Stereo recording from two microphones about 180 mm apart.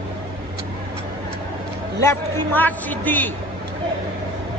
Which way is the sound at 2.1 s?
10° left (ahead or behind).